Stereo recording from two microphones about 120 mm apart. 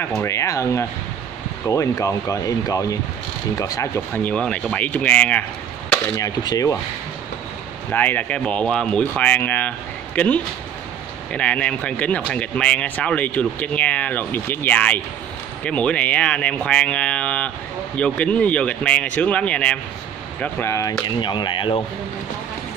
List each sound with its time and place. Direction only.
0.0 s speech: 20° left (ahead or behind)
4.2 s speech: 10° left (ahead or behind)
6.1 s speech: 30° left (ahead or behind)
7.9 s speech: 15° left (ahead or behind)
21.1 s speech: 40° left (ahead or behind)